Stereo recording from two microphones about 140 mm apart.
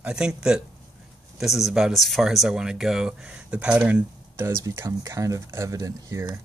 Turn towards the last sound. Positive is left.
turn(degrees=-25)  # may be behind; listen again after turning